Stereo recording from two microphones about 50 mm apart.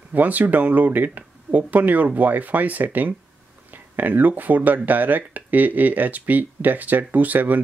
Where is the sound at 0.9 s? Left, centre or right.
Right.